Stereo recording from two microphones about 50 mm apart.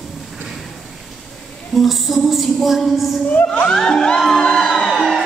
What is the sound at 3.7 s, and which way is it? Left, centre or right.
Music, centre.